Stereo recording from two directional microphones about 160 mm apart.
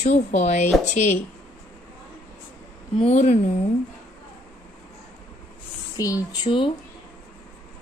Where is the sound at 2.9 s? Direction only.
40° left (ahead or behind).